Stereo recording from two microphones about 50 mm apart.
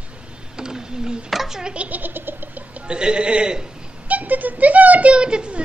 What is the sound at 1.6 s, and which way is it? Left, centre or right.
Speech, right.